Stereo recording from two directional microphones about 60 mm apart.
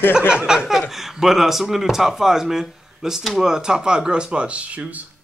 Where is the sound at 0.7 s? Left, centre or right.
Centre; by 4.8 s right.